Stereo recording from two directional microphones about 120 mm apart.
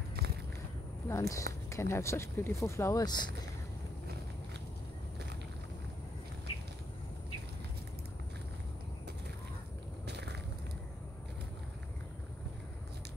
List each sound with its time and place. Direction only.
1.0 s speech: 25° left (ahead or behind)